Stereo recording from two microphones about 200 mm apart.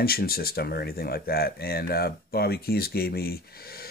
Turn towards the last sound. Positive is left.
turn(degrees=50)  # may be behind; listen again after turning